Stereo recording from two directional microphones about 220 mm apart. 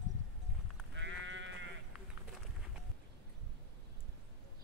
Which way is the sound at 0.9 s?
55° right (ahead or behind).